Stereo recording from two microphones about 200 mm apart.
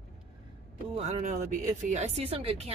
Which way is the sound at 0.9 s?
35° right (ahead or behind).